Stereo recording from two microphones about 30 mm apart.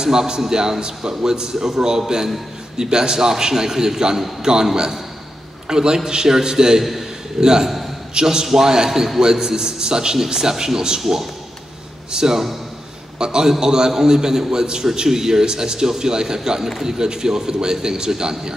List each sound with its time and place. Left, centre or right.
0.0 s a man's voice: right
5.7 s a man's voice: right
6.8 s a man's voice: centre
7.3 s a man's voice: right
12.1 s a man's voice: right